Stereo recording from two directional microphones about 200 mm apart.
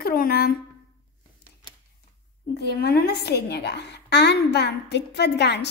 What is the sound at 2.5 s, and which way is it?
A woman's voice, 55° left (ahead or behind).